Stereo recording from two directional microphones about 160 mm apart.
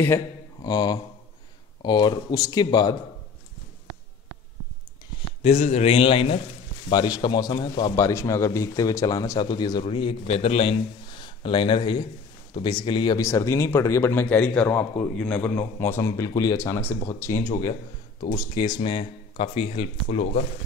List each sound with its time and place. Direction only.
0.6 s mantra: 25° left (ahead or behind)
1.8 s a man's voice: 30° left (ahead or behind)
5.4 s a man's voice: 40° left (ahead or behind)